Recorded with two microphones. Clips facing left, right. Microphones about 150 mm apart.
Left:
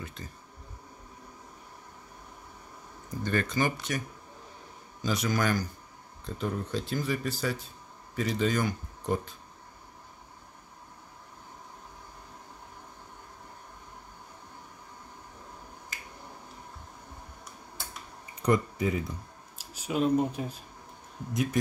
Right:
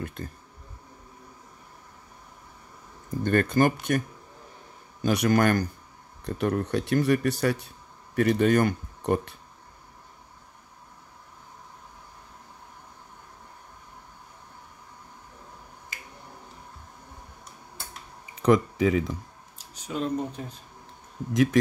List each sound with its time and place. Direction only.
0.0 s a sound: 55° right (ahead or behind)
3.3 s speech: 55° right (ahead or behind)
5.0 s speech: 60° right (ahead or behind)
6.2 s speech: 70° right (ahead or behind)
18.4 s speech: 90° right
19.6 s speech: 10° left (ahead or behind)
21.3 s speech: 90° right